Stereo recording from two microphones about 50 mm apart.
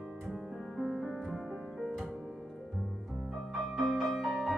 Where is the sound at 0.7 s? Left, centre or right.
Centre.